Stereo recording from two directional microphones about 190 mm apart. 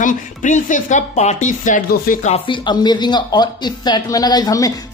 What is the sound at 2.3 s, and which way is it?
Speech, 25° left (ahead or behind).